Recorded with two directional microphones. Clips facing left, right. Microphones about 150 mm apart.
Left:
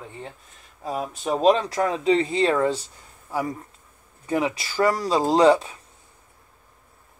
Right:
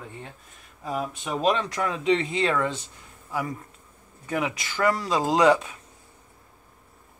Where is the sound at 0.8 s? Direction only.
30° left (ahead or behind).